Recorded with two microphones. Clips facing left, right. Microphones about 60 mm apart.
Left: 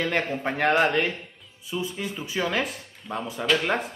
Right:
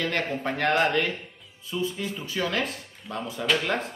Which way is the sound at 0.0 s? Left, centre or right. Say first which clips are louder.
Left 2 dB; centre.